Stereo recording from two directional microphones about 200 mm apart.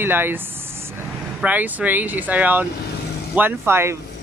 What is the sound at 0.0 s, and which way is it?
Speech, 10° right (ahead or behind).